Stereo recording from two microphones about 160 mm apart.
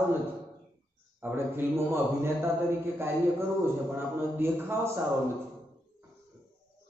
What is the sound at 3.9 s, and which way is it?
Speech, 15° right (ahead or behind).